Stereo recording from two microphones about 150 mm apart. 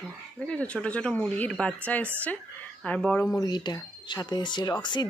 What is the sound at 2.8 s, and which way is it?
Speech, 5° left (ahead or behind).